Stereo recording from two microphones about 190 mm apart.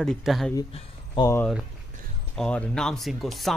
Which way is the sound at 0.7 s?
30° left (ahead or behind).